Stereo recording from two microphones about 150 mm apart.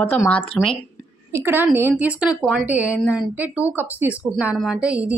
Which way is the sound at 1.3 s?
15° right (ahead or behind).